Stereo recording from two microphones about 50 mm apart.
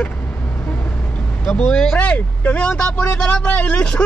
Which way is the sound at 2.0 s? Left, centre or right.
Left.